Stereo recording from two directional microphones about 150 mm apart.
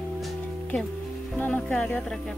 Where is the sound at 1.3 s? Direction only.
5° left (ahead or behind).